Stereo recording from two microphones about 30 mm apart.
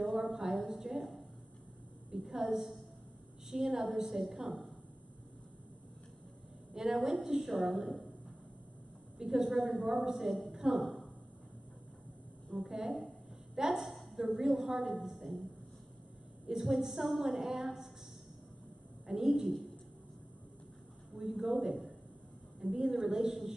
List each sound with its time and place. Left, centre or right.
0.0 s a sound: centre
0.7 s a woman's voice: centre
2.0 s a woman's voice: centre
6.7 s a woman's voice: centre
9.2 s a woman's voice: centre
12.5 s a woman's voice: centre
16.4 s a woman's voice: centre
19.0 s a woman's voice: centre
21.2 s a woman's voice: centre